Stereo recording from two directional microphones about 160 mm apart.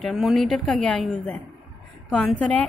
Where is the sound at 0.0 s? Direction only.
Centre (ahead or behind).